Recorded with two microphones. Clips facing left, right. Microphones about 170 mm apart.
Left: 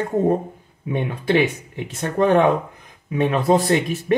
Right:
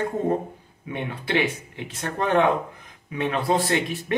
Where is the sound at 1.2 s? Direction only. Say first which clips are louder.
Left 6 dB; 45° left (ahead or behind).